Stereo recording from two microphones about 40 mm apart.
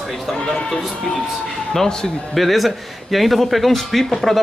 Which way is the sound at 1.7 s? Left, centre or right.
Centre.